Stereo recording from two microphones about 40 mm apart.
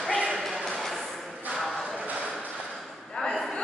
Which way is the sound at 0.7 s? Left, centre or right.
Centre.